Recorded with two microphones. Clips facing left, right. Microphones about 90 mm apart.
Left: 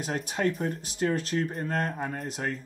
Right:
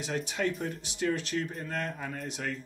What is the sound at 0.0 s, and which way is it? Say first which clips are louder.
Speech: left 3 dB; 40° left (ahead or behind).